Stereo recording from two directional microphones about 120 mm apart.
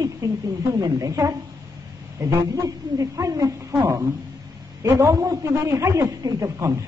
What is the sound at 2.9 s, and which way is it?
A man's voice, 30° right (ahead or behind).